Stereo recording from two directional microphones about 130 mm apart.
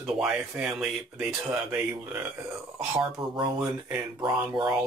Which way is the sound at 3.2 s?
35° right (ahead or behind).